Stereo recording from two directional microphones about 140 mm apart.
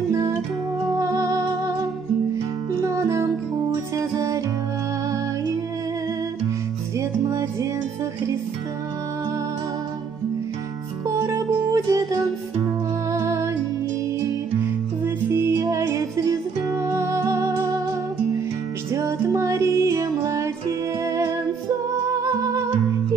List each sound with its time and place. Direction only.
0.1 s music: 20° right (ahead or behind)
7.0 s music: 20° right (ahead or behind)
11.1 s music: 20° right (ahead or behind)
18.9 s music: 20° right (ahead or behind)